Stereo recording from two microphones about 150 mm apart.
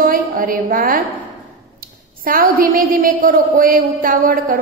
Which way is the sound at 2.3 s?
75° right (ahead or behind).